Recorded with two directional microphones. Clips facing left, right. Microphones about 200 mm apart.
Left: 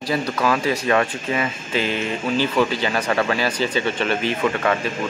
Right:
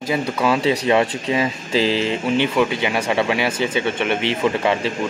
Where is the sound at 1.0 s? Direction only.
30° right (ahead or behind).